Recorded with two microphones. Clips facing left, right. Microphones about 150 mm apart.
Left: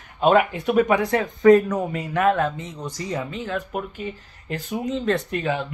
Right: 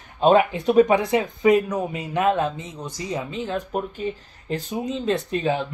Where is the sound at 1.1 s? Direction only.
15° right (ahead or behind); by 4.0 s 30° right (ahead or behind).